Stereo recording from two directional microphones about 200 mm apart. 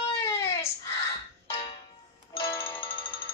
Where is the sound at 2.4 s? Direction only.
10° left (ahead or behind).